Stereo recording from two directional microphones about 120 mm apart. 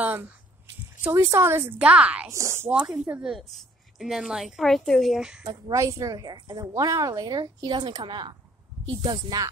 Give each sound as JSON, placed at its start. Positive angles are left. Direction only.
{"t": 0.0, "sound": "speech", "side_deg": -15}
{"t": 1.0, "sound": "speech", "side_deg": -25}
{"t": 2.2, "sound": "speech", "side_deg": -25}
{"t": 2.7, "sound": "a woman's voice", "side_deg": -10}
{"t": 5.5, "sound": "a woman's voice", "side_deg": -25}